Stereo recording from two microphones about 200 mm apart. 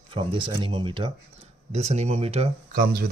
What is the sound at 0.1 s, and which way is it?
Speech, 25° right (ahead or behind).